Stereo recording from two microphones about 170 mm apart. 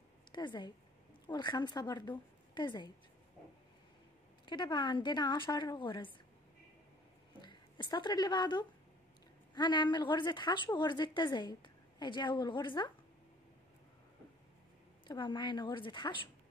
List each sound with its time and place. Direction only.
0.3 s a woman's voice: 25° left (ahead or behind)
4.5 s a woman's voice: 25° left (ahead or behind)
7.4 s a woman's voice: 25° left (ahead or behind)
15.0 s a woman's voice: 25° left (ahead or behind)